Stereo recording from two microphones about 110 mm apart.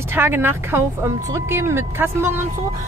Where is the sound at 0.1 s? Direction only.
20° right (ahead or behind).